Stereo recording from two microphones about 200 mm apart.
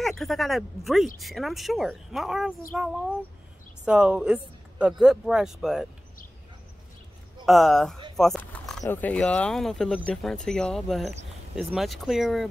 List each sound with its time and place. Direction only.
0.0 s speech: centre (ahead or behind)
7.4 s speech: centre (ahead or behind)
8.2 s a sound: centre (ahead or behind)
8.8 s speech: 10° left (ahead or behind)